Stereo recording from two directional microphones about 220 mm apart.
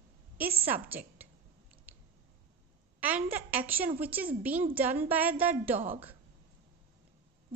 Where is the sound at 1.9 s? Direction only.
10° right (ahead or behind).